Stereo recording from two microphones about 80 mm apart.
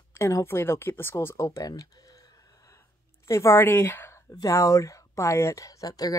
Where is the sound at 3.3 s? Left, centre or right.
Left.